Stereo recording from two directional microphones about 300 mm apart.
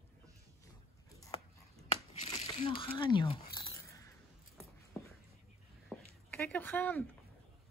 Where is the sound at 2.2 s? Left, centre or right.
Centre.